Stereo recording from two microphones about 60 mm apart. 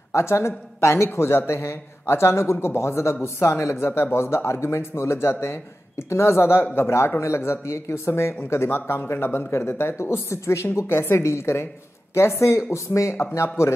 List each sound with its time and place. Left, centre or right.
0.1 s speech: left
12.7 s speech: left